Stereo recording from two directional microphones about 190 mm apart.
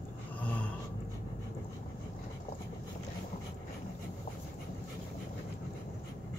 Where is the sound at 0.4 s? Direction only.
5° left (ahead or behind).